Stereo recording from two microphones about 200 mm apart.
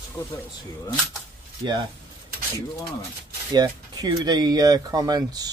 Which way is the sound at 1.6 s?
25° right (ahead or behind).